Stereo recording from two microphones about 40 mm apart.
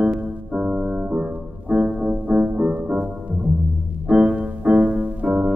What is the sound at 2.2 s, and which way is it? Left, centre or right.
Music, right.